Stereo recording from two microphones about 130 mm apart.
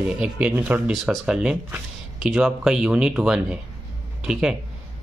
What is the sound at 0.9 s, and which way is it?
Speech, centre (ahead or behind).